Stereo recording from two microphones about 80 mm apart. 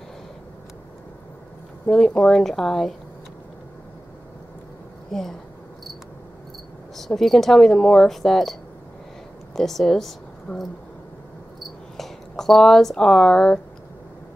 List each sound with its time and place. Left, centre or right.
1.9 s speech: centre
5.1 s speech: centre
7.0 s speech: centre
9.6 s a woman's voice: centre
12.0 s speech: centre